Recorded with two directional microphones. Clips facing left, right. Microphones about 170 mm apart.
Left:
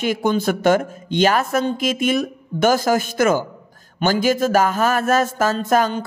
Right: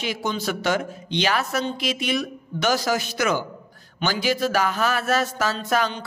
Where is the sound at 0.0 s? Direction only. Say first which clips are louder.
Left 7 dB; 50° left (ahead or behind).